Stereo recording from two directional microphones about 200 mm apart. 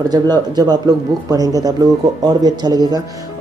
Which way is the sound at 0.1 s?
20° right (ahead or behind).